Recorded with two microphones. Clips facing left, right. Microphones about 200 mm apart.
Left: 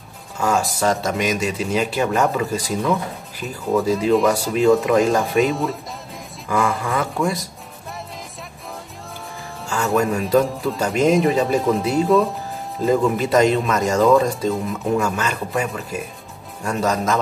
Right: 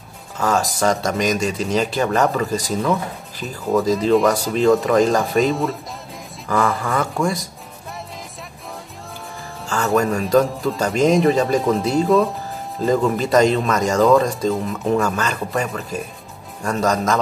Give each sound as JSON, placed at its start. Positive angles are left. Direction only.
{"t": 0.7, "sound": "speech", "side_deg": 5}
{"t": 9.7, "sound": "speech", "side_deg": 0}